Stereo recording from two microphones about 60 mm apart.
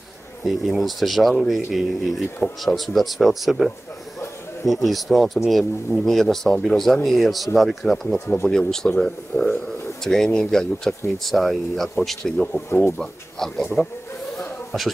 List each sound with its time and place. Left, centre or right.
0.5 s speech: centre
9.3 s speech: left
10.0 s speech: centre
12.6 s speech: left
12.9 s speech: centre
13.8 s speech: centre